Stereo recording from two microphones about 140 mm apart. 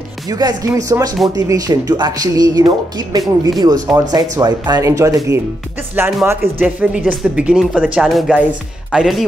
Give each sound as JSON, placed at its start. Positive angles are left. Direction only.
{"t": 0.3, "sound": "speech", "side_deg": -25}